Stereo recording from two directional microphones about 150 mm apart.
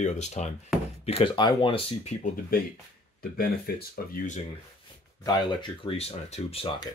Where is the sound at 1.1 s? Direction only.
40° left (ahead or behind).